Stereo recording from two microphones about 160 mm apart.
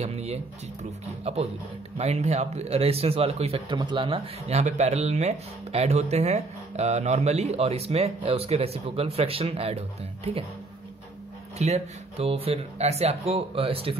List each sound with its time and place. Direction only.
0.0 s speech: 40° right (ahead or behind)
11.5 s speech: 45° right (ahead or behind)